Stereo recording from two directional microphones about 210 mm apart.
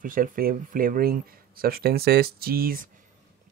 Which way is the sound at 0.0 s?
40° right (ahead or behind).